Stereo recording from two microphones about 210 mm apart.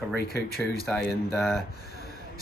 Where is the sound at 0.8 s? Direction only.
5° left (ahead or behind).